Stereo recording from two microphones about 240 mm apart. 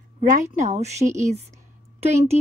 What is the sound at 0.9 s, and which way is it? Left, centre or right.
Speech, centre.